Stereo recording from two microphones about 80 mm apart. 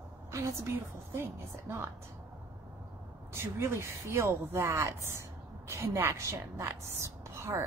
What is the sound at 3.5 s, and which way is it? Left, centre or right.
A woman's voice, right.